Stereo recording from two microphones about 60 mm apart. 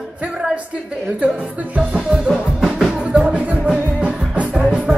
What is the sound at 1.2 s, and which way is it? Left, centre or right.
Music, right.